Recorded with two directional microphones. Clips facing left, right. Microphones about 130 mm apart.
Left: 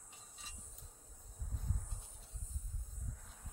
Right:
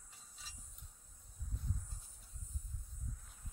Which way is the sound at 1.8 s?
65° left (ahead or behind).